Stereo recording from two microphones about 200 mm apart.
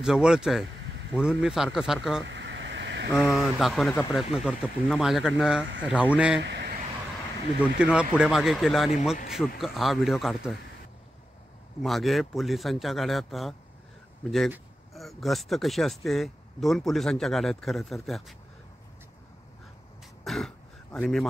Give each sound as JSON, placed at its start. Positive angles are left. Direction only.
{"t": 0.0, "sound": "speech", "side_deg": -5}
{"t": 2.2, "sound": "vehicle", "side_deg": -65}
{"t": 3.2, "sound": "speech", "side_deg": -5}
{"t": 6.4, "sound": "a sound", "side_deg": -55}
{"t": 7.6, "sound": "speech", "side_deg": -5}
{"t": 11.8, "sound": "speech", "side_deg": 0}
{"t": 20.2, "sound": "throat clearing", "side_deg": 0}